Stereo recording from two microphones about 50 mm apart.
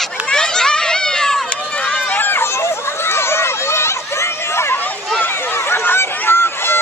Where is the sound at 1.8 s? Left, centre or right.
Left.